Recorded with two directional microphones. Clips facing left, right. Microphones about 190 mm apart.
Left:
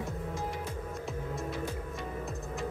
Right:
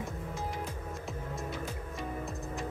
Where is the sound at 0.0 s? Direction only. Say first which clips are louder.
Left 2 dB; centre (ahead or behind).